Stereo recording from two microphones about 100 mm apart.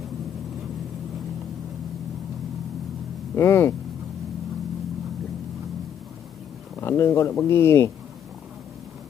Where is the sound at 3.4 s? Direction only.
25° left (ahead or behind).